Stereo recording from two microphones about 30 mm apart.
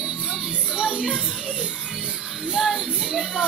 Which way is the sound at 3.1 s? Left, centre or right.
Right.